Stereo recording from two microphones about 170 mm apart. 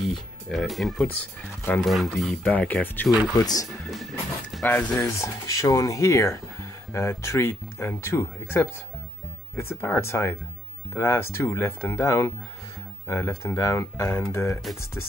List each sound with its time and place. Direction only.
0.1 s speech: centre (ahead or behind)
3.3 s speech: 20° left (ahead or behind)
3.9 s a sound: centre (ahead or behind)
4.6 s speech: 10° left (ahead or behind)